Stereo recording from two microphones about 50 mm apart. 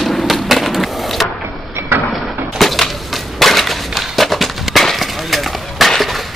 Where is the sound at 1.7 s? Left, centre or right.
Right.